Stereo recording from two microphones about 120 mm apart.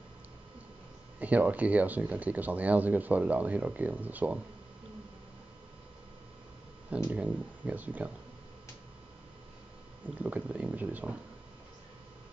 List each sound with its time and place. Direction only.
1.2 s speech: 15° right (ahead or behind)
7.1 s speech: 10° right (ahead or behind)
10.1 s speech: 10° right (ahead or behind)